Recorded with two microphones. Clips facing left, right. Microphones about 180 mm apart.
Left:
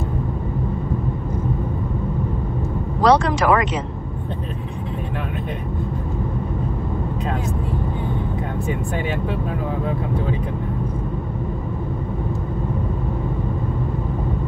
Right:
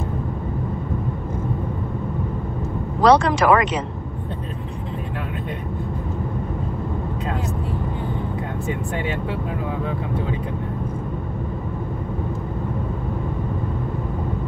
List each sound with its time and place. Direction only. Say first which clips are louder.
3.0 s speech: right 1 dB; 65° right (ahead or behind)